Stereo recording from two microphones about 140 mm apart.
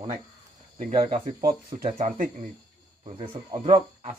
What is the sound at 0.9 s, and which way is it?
Speech, 40° right (ahead or behind).